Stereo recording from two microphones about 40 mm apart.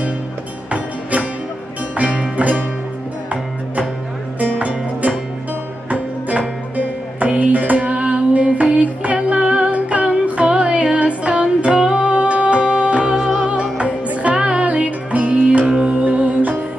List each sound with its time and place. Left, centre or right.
2.0 s music: right
4.4 s music: right
13.1 s music: centre
13.5 s music: right